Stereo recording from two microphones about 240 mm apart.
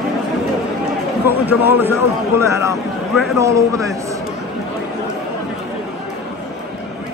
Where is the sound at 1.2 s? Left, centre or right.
Centre.